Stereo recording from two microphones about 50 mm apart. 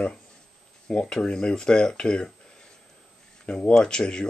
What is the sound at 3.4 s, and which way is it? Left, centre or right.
Speech, left.